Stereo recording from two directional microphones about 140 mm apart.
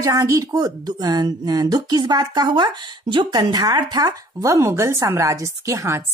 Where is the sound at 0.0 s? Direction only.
25° right (ahead or behind).